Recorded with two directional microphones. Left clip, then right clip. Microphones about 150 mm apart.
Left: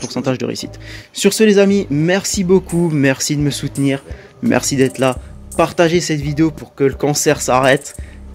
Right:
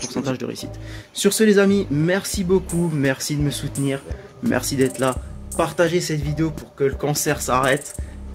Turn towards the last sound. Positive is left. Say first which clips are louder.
# left 6 dB
turn(degrees=55)  # may be behind; listen again after turning